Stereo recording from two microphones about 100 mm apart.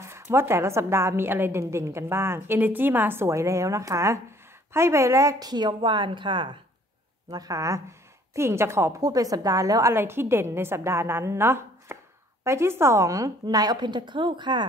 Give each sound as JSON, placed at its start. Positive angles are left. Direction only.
{"t": 0.0, "sound": "a woman's voice", "side_deg": -25}
{"t": 7.2, "sound": "a woman's voice", "side_deg": -40}
{"t": 9.9, "sound": "a woman's voice", "side_deg": -25}